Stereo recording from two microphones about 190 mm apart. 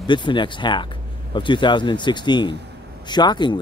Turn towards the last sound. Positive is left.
turn(degrees=25)  # may be behind; listen again after turning